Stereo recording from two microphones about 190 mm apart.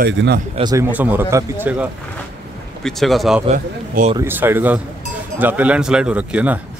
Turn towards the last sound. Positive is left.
turn(degrees=-10)  # may be behind; listen again after turning